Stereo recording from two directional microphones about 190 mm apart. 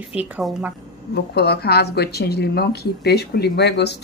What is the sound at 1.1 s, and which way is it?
Speech, 60° left (ahead or behind).